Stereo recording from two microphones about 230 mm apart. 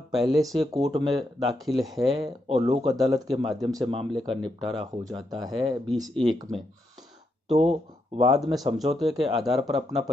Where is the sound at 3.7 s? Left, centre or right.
Centre.